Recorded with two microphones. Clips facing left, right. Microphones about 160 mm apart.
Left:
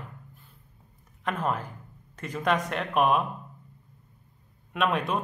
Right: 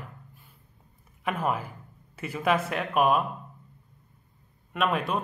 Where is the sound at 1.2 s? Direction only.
10° right (ahead or behind).